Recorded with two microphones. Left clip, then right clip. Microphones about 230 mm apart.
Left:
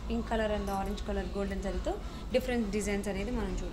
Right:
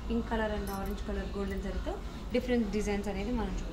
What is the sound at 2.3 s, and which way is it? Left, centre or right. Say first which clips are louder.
Speech: even; left.